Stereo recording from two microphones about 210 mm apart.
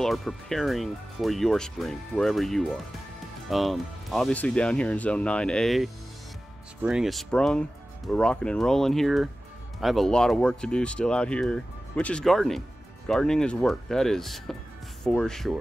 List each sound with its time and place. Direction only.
0.0 s speech: centre (ahead or behind)